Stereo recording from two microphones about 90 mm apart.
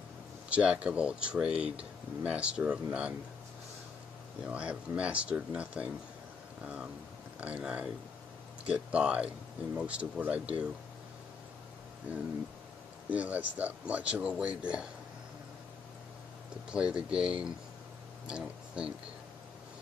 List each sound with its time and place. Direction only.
0.5 s speech: 15° right (ahead or behind)
4.5 s speech: 15° right (ahead or behind)
12.1 s speech: 15° right (ahead or behind)
16.7 s speech: 10° right (ahead or behind)